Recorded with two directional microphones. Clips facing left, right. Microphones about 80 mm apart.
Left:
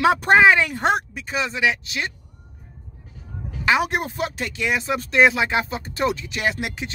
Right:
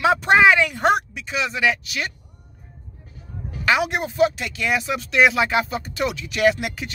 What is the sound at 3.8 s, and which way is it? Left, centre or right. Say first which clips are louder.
Speech: right 4 dB; left.